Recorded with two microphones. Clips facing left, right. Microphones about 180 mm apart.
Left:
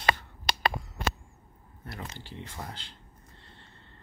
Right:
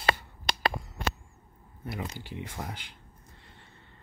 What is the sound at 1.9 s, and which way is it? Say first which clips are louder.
Speech: right 5 dB; 10° right (ahead or behind).